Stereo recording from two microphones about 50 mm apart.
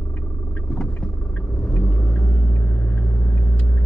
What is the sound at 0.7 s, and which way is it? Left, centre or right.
Vehicle, centre.